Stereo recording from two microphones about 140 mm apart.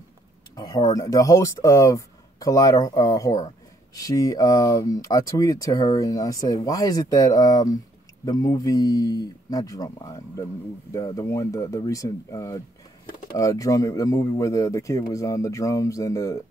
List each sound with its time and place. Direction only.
0.6 s speech: 30° left (ahead or behind)